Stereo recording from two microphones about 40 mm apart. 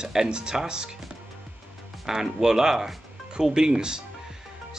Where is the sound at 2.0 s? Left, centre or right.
Centre.